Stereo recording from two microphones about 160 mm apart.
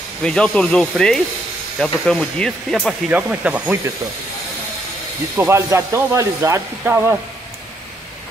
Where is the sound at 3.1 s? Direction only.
10° right (ahead or behind).